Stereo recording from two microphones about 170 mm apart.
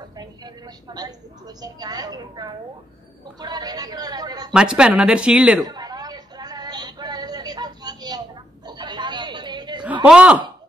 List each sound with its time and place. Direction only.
0.1 s a woman's voice: 25° right (ahead or behind)
4.5 s speech: 5° right (ahead or behind)
5.7 s a sound: 25° right (ahead or behind)
8.6 s chatter: 25° right (ahead or behind)
10.0 s speech: 5° right (ahead or behind)